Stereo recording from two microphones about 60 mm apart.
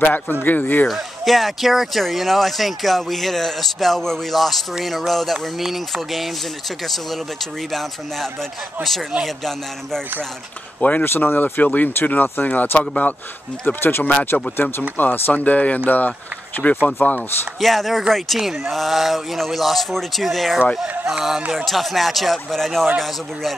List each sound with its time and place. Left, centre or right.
0.0 s speech: left
0.8 s speech: centre
10.8 s speech: left
17.6 s speech: centre